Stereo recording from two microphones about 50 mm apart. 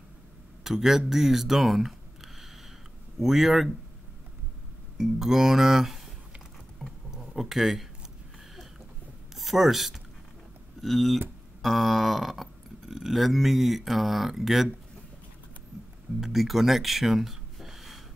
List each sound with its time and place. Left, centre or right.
0.7 s speech: centre
4.9 s speech: centre
7.1 s a sound: centre
9.3 s speech: centre
16.2 s speech: centre